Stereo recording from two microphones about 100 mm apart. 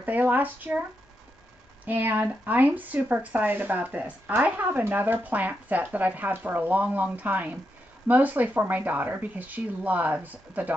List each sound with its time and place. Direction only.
0.0 s speech: 15° right (ahead or behind)
1.9 s speech: 20° right (ahead or behind)